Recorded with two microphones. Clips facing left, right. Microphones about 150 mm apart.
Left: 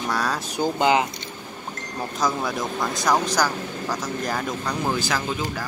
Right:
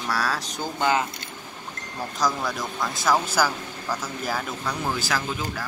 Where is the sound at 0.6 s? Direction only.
15° left (ahead or behind).